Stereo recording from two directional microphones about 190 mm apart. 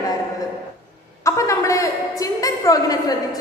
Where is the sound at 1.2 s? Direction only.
15° left (ahead or behind).